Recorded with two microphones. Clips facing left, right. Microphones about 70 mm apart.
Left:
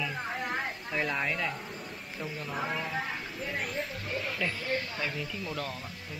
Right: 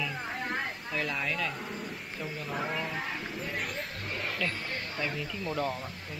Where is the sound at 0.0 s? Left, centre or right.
Centre.